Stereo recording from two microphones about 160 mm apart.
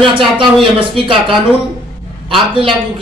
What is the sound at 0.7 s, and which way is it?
Speech, 30° right (ahead or behind).